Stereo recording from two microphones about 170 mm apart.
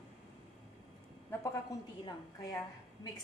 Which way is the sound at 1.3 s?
20° left (ahead or behind).